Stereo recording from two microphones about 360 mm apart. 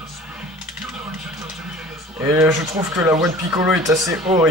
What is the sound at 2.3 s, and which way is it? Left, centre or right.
Speech, centre.